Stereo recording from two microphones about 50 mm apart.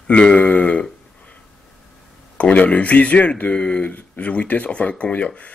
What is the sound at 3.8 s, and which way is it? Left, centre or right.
Speech, left.